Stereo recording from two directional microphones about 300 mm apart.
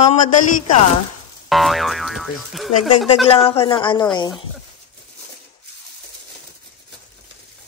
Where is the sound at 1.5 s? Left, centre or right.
Centre.